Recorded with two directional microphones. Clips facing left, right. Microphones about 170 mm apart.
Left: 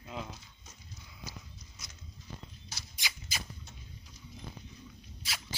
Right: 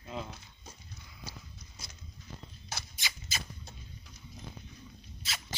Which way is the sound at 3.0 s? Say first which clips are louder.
Even; 10° left (ahead or behind).